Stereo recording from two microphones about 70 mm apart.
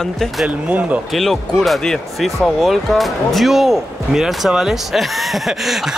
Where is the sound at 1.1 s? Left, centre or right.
Centre.